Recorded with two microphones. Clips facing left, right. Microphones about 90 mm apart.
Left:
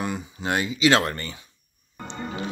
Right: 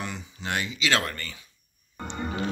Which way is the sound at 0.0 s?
15° left (ahead or behind).